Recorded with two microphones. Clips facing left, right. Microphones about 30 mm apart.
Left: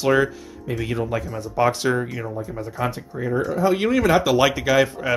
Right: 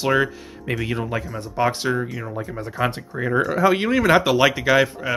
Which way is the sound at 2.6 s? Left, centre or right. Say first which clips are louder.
Right 3 dB; right.